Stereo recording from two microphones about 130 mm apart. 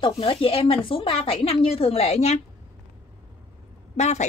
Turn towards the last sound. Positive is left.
turn(degrees=60)  # may be behind; listen again after turning